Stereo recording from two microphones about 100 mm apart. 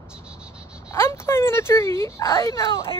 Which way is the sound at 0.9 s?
25° left (ahead or behind).